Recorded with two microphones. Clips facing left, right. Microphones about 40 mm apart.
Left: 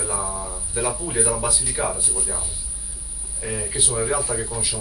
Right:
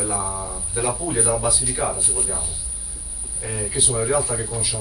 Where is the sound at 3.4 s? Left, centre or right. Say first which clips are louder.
Right 1 dB; centre.